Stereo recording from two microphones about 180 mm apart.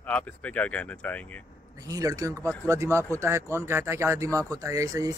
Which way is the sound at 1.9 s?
20° right (ahead or behind).